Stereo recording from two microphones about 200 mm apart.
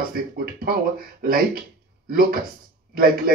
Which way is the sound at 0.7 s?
45° right (ahead or behind).